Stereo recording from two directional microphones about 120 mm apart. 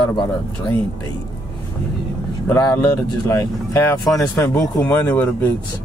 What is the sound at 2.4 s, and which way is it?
Speech, 30° left (ahead or behind).